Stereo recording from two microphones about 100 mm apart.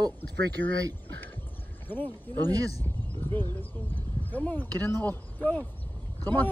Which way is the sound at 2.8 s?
20° left (ahead or behind).